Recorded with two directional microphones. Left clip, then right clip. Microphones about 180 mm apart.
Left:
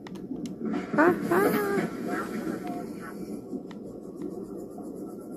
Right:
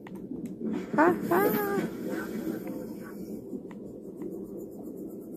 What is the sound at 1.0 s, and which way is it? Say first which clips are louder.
Speech: left 1 dB; 20° left (ahead or behind).